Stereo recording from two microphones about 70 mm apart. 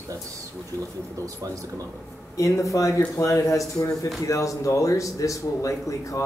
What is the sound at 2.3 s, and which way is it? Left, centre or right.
Speech, left.